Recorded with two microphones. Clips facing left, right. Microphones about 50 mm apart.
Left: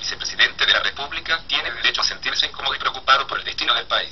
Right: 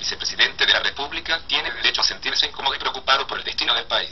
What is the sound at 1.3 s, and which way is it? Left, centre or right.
Speech, centre.